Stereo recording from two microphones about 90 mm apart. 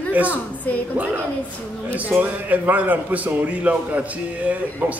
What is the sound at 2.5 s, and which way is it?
A man's voice, 20° right (ahead or behind).